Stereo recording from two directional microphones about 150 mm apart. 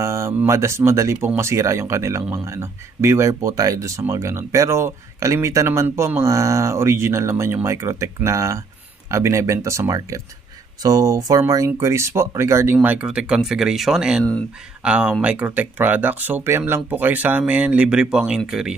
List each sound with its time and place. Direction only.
0.0 s speech: 20° right (ahead or behind)